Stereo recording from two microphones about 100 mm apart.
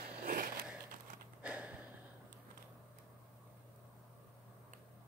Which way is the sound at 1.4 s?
10° right (ahead or behind).